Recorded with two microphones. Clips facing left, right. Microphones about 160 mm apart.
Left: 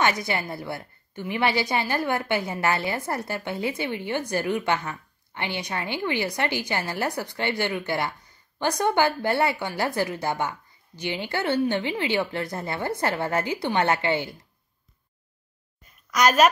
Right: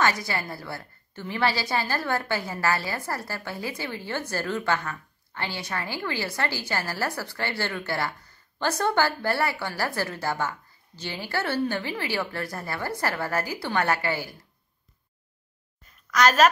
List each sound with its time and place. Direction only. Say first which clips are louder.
0.0 s a woman's voice: left 1 dB; 20° left (ahead or behind)
16.1 s a woman's voice: left 1 dB; 15° left (ahead or behind)